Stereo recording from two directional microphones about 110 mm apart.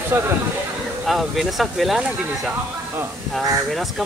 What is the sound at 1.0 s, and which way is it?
Speech, centre (ahead or behind).